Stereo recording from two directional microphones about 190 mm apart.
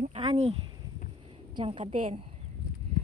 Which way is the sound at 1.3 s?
25° right (ahead or behind).